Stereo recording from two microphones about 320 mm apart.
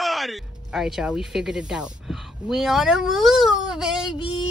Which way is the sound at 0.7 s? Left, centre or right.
Centre.